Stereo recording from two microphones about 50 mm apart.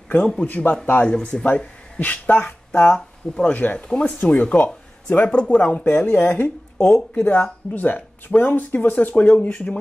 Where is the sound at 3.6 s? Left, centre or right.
Left.